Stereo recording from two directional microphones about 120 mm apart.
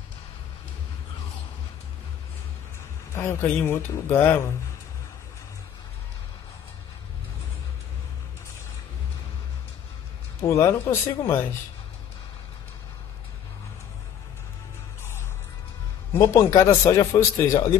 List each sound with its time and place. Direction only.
3.1 s a man's voice: 20° left (ahead or behind)
10.4 s a man's voice: 25° left (ahead or behind)
16.1 s a man's voice: 25° left (ahead or behind)